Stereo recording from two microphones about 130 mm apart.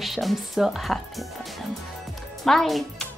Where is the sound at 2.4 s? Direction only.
Centre (ahead or behind).